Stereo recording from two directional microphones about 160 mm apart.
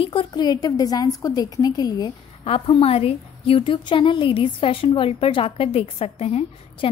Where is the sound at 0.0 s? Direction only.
30° left (ahead or behind).